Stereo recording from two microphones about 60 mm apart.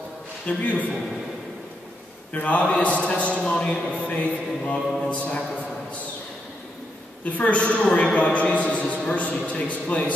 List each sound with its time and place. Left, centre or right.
0.5 s a man's voice: left
2.3 s a man's voice: left
7.2 s a man's voice: left